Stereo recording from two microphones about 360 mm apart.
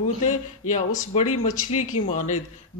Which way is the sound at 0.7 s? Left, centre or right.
Centre.